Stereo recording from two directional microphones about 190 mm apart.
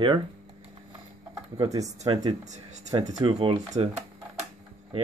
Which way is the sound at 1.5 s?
20° right (ahead or behind).